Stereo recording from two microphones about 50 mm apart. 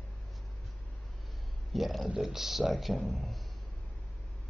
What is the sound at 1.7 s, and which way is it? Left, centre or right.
Speech, centre.